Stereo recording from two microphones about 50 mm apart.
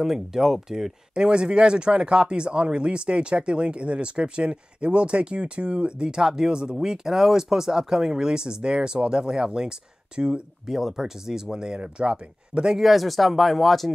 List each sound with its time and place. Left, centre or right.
0.0 s speech: centre
10.7 s speech: centre
12.8 s speech: centre